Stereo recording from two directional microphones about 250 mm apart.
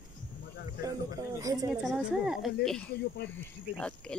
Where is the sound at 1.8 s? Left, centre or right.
Centre.